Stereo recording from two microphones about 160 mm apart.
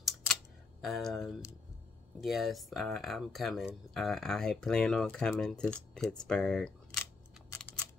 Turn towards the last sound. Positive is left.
turn(degrees=5)  # may be behind; listen again after turning